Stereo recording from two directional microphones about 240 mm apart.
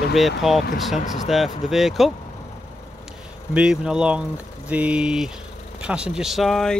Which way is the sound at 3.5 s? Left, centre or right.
Centre.